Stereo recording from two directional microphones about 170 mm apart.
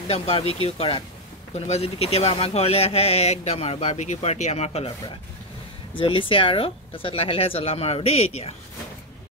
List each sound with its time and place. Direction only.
0.1 s a man's voice: 35° left (ahead or behind)